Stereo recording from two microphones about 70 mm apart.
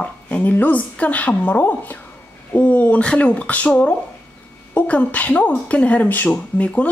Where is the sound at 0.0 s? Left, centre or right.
Centre.